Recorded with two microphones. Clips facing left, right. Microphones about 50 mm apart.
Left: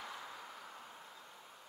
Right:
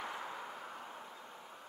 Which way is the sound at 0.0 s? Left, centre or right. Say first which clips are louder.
Right 5 dB; right.